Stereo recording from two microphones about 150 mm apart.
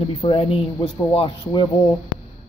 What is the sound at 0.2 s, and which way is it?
Speech, 40° left (ahead or behind).